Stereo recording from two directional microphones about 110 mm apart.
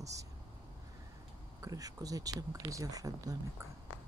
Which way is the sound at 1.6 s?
30° right (ahead or behind).